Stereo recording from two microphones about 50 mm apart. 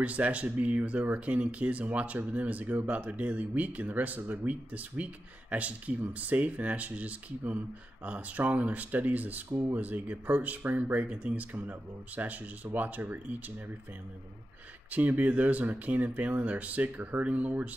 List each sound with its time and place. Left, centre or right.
0.0 s speech: right
9.5 s speech: right
9.8 s speech: right
14.9 s speech: right